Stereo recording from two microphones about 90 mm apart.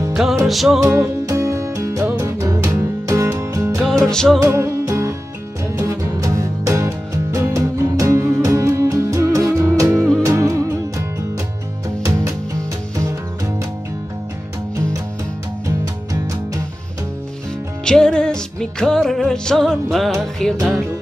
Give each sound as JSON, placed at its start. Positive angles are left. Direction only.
{"t": 0.1, "sound": "music", "side_deg": -5}
{"t": 1.2, "sound": "music", "side_deg": -35}
{"t": 3.8, "sound": "music", "side_deg": 5}
{"t": 4.4, "sound": "music", "side_deg": -35}
{"t": 17.8, "sound": "music", "side_deg": 10}